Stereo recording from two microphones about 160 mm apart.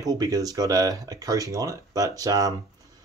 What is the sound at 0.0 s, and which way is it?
Speech, 20° right (ahead or behind).